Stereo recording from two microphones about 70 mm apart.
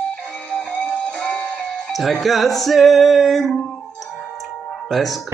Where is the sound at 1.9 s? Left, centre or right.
Centre.